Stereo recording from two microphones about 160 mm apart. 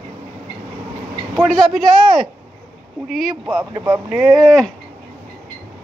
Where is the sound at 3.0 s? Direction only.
Centre (ahead or behind).